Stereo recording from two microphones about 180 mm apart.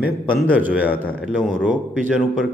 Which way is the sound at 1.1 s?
5° left (ahead or behind).